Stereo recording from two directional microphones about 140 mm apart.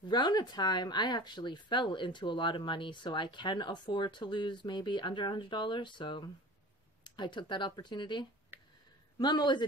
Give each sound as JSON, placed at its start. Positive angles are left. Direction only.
{"t": 0.1, "sound": "speech", "side_deg": 30}
{"t": 8.5, "sound": "a sound", "side_deg": -15}
{"t": 9.2, "sound": "speech", "side_deg": 30}